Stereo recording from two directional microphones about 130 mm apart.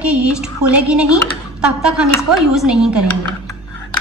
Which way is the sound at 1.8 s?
Centre (ahead or behind).